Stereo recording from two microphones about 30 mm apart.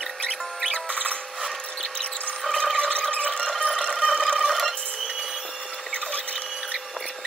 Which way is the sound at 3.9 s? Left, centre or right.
Centre.